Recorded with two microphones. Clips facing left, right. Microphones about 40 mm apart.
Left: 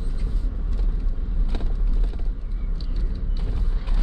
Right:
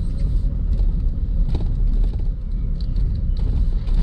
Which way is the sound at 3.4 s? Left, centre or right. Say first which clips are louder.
Right 5 dB; left.